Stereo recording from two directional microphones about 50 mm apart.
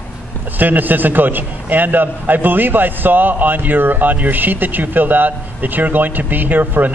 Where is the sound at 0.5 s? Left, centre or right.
Right.